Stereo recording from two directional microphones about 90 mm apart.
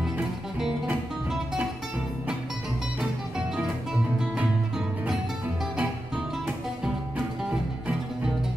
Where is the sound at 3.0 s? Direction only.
10° right (ahead or behind).